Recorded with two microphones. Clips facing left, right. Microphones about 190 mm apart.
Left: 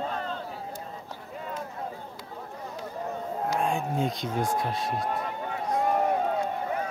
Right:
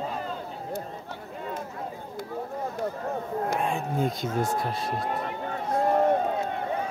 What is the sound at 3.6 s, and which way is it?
Speech, centre (ahead or behind).